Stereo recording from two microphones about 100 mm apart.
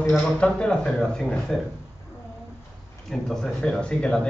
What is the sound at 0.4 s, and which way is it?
A man's voice, 10° left (ahead or behind).